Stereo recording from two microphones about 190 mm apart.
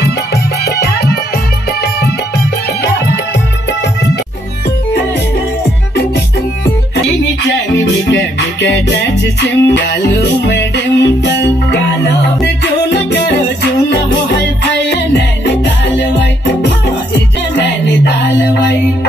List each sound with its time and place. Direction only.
0.0 s music: 60° left (ahead or behind)
7.7 s music: 70° left (ahead or behind)